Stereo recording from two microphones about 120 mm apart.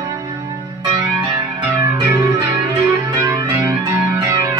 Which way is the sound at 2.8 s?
25° right (ahead or behind).